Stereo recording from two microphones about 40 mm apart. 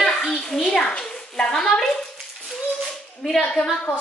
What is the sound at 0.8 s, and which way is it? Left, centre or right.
A child's voice, left.